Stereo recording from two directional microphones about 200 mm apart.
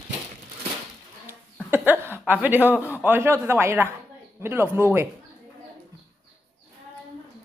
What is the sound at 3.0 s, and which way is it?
Speech, 10° right (ahead or behind).